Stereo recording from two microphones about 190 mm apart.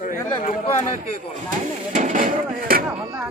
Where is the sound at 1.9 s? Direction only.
40° right (ahead or behind).